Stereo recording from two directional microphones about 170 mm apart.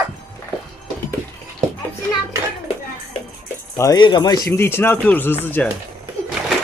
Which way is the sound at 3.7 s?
20° left (ahead or behind).